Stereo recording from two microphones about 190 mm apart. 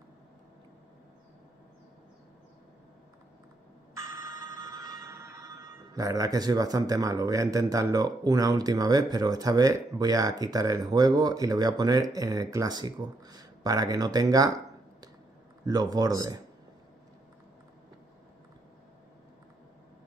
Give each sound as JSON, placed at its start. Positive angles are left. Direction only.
{"t": 3.9, "sound": "telephone bell ringing", "side_deg": -15}
{"t": 15.6, "sound": "speech", "side_deg": -20}